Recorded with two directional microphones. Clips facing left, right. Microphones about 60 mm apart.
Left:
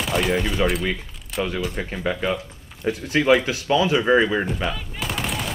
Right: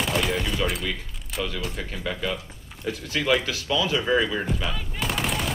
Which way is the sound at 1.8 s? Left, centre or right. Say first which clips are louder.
Left 4 dB; left.